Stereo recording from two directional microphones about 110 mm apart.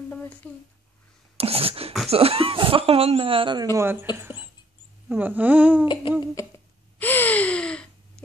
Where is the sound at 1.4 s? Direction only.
60° right (ahead or behind).